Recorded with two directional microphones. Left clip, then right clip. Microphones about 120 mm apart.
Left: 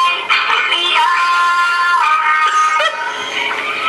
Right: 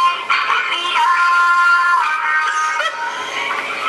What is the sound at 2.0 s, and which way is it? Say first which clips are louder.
Music: left 4 dB; 20° left (ahead or behind).